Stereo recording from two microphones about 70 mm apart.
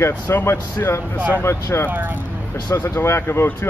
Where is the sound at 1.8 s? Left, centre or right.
Right.